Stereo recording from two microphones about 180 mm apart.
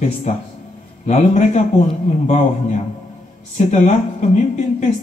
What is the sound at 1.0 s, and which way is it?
A man's voice, 40° left (ahead or behind).